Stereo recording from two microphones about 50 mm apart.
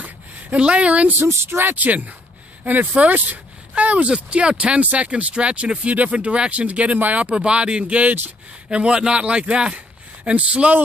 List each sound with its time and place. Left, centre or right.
0.0 s a sound: right
1.3 s speech: right
7.3 s speech: right
8.6 s speech: right